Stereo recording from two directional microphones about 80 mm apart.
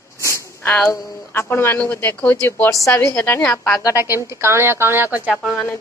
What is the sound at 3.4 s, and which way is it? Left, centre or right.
Speech, centre.